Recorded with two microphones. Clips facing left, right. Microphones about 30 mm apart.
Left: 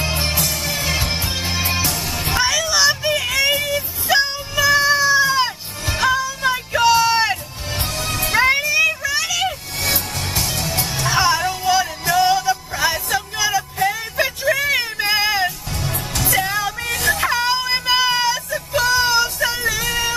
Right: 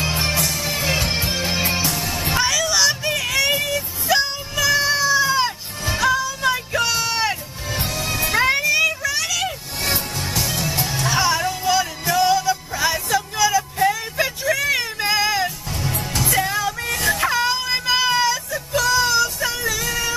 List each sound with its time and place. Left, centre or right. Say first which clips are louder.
0.4 s music: even; left
1.7 s music: left 1 dB; left
2.3 s music: left 1 dB; centre
3.7 s music: left 2 dB; left
4.6 s cat: left 3 dB; centre
5.9 s music: left 1 dB; centre
7.7 s music: even; left
8.3 s music: left 2 dB; centre
9.8 s music: right 1 dB; left
10.4 s music: even; left
14.1 s a sound: left 2 dB; centre
14.6 s child singing: left 2 dB; centre
15.8 s music: even; left
16.3 s music: left 2 dB; centre